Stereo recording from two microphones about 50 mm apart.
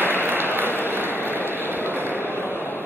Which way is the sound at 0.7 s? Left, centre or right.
Left.